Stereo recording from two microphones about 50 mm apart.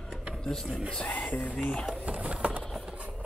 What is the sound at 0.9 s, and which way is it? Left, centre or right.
Speech, left.